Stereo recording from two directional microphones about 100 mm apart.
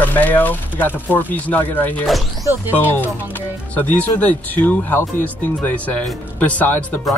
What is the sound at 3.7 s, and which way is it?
Speech, 15° left (ahead or behind).